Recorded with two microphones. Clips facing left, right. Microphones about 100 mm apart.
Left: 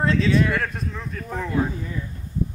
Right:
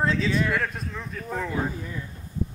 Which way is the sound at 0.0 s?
Centre (ahead or behind).